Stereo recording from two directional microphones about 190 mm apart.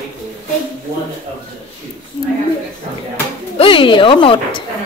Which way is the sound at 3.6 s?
25° left (ahead or behind).